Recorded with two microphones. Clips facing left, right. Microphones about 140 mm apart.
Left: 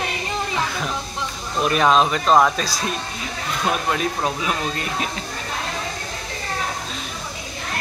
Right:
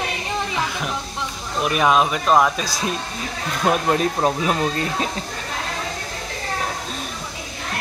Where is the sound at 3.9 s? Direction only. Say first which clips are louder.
Right 4 dB; 35° right (ahead or behind).